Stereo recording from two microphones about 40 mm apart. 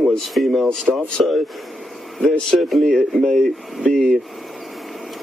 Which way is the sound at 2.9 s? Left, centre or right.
Centre.